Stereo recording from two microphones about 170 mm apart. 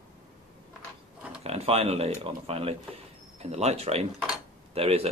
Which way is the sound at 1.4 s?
35° right (ahead or behind).